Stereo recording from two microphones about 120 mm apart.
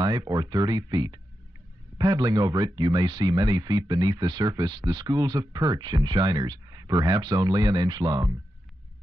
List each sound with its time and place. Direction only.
0.0 s speech: 35° right (ahead or behind)